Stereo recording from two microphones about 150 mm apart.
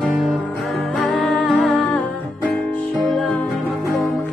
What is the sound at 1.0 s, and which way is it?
Music, 5° left (ahead or behind).